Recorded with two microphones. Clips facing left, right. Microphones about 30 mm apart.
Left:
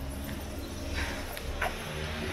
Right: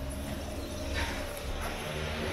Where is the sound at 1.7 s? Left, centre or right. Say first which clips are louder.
Right 1 dB; centre.